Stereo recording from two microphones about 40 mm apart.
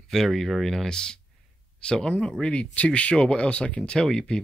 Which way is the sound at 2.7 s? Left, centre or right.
Left.